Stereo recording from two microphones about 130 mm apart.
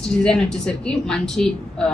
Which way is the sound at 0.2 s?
5° left (ahead or behind).